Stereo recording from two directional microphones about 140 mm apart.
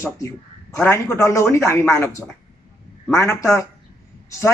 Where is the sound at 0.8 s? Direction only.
20° left (ahead or behind).